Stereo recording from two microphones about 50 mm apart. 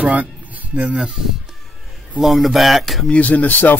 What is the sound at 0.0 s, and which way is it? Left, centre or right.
Speech, right.